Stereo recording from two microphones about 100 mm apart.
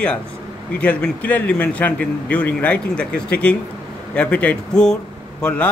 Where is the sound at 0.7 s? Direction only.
10° left (ahead or behind).